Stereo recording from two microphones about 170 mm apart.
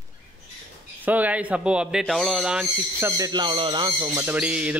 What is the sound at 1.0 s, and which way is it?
Speech, 10° right (ahead or behind).